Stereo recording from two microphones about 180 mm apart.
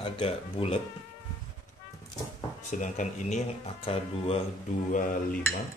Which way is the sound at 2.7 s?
45° left (ahead or behind).